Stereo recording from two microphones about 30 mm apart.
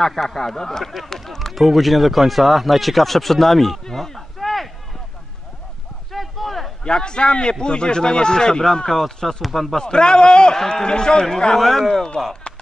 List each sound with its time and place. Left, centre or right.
0.0 s speech: centre
1.5 s speech: centre
3.8 s a sound: centre
6.1 s a sound: centre
6.8 s a man's voice: left
9.4 s speech: centre
9.8 s speech: left
11.5 s speech: centre